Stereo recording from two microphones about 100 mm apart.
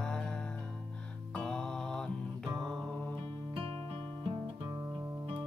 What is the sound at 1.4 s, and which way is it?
Music, 5° left (ahead or behind).